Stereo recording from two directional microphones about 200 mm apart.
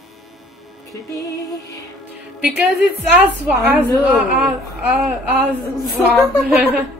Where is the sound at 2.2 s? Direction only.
5° right (ahead or behind).